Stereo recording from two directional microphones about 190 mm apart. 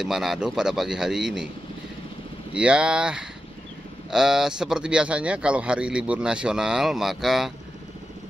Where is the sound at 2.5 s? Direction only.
5° right (ahead or behind).